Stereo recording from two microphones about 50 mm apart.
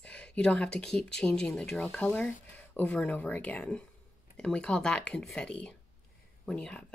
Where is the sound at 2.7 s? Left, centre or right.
Left.